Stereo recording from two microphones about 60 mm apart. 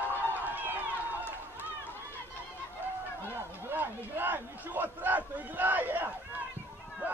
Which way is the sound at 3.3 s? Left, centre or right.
Right.